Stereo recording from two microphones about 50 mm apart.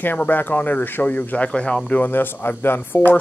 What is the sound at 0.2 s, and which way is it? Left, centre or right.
Speech, left.